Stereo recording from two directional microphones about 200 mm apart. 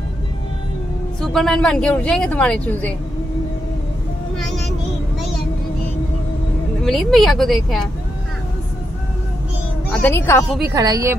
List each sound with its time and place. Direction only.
1.2 s speech: centre (ahead or behind)
4.4 s music: centre (ahead or behind)
6.8 s speech: centre (ahead or behind)
9.8 s speech: 10° left (ahead or behind)
10.7 s speech: 15° right (ahead or behind)